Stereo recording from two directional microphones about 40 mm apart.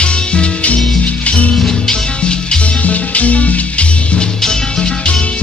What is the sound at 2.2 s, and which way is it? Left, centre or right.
Music, left.